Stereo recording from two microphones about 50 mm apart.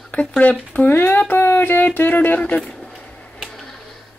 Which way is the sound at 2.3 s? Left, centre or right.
Left.